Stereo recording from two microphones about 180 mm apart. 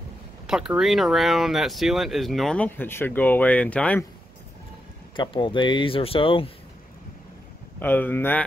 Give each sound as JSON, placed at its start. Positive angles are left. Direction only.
{"t": 0.5, "sound": "speech", "side_deg": -5}
{"t": 5.1, "sound": "speech", "side_deg": 25}
{"t": 7.8, "sound": "speech", "side_deg": 10}